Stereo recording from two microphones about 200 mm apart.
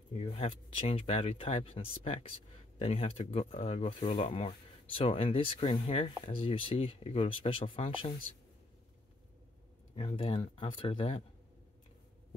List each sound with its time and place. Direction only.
0.1 s speech: 30° left (ahead or behind)
9.9 s speech: 25° left (ahead or behind)